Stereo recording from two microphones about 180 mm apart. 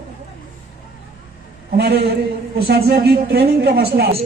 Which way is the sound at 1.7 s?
65° right (ahead or behind).